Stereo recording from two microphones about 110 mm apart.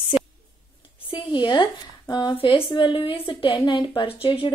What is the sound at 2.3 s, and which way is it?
A woman's voice, 55° left (ahead or behind).